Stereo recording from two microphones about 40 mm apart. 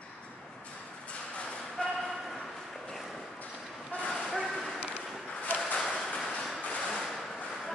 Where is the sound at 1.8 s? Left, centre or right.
Left.